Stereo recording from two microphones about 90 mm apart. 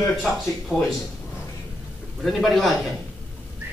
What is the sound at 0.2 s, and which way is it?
Speech, 5° left (ahead or behind).